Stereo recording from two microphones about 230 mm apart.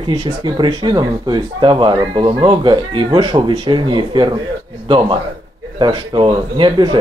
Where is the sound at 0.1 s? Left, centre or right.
Centre.